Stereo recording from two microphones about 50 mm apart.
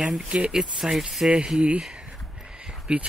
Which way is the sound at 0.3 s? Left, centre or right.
Centre.